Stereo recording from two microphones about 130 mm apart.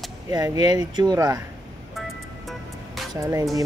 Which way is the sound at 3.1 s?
25° right (ahead or behind).